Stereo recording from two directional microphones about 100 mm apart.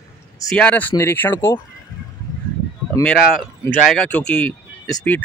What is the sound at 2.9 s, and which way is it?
Speech, 30° left (ahead or behind).